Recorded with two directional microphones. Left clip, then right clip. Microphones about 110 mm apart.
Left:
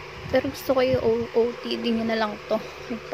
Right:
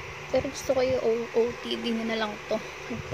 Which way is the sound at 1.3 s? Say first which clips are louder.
Left 3 dB; 25° left (ahead or behind).